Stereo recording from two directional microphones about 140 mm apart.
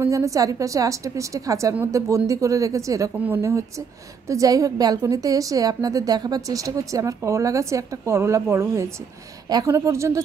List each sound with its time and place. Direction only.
0.0 s a woman's voice: 20° right (ahead or behind)